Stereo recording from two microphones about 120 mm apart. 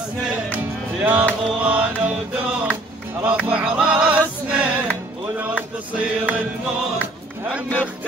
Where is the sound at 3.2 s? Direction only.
10° right (ahead or behind).